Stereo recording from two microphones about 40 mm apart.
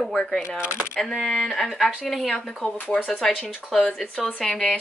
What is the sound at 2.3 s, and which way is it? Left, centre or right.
Speech, centre.